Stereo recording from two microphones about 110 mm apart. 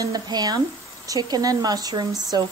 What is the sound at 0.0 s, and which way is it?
Speech, 35° right (ahead or behind).